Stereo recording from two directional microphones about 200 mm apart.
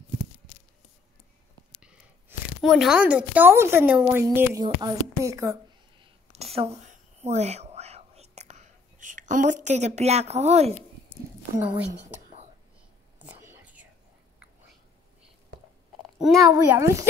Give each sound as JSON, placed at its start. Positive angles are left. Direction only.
{"t": 1.8, "sound": "a woman's voice", "side_deg": -5}
{"t": 6.3, "sound": "a sound", "side_deg": -30}
{"t": 6.8, "sound": "whispering", "side_deg": -35}
{"t": 11.5, "sound": "a woman's voice", "side_deg": -10}
{"t": 13.4, "sound": "whispering", "side_deg": -10}
{"t": 16.7, "sound": "a woman's voice", "side_deg": -15}